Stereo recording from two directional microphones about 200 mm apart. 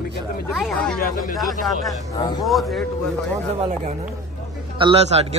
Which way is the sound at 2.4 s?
Centre (ahead or behind).